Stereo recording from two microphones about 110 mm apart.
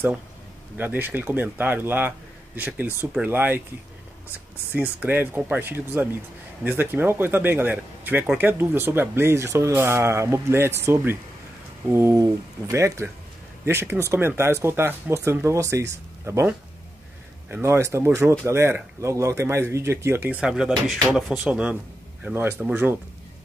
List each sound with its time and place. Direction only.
0.7 s speech: 20° right (ahead or behind)
4.7 s speech: 15° right (ahead or behind)
17.5 s speech: 25° right (ahead or behind)
20.3 s speech: 5° right (ahead or behind)
22.2 s speech: 20° right (ahead or behind)